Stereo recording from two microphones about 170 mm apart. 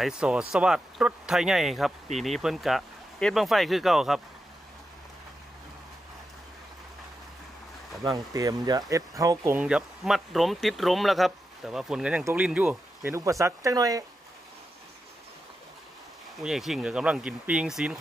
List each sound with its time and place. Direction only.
0.0 s speech: 5° right (ahead or behind)
8.0 s speech: 20° right (ahead or behind)
9.5 s speech: 5° right (ahead or behind)
16.4 s speech: centre (ahead or behind)